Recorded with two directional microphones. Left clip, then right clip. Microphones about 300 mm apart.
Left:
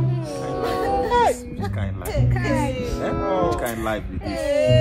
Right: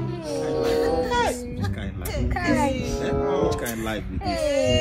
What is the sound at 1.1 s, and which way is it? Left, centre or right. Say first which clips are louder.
Music: left 5 dB; left.